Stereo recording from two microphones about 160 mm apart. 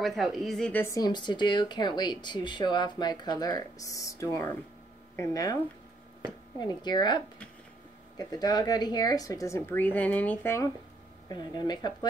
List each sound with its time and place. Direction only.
0.0 s speech: centre (ahead or behind); by 5.6 s 20° left (ahead or behind)
6.6 s speech: 25° left (ahead or behind)
11.2 s speech: 25° left (ahead or behind)